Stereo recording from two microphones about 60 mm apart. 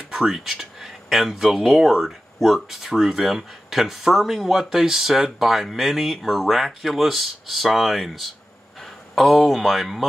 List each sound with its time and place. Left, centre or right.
0.1 s speech: centre